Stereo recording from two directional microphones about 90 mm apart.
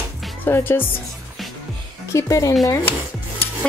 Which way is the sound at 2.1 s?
35° left (ahead or behind).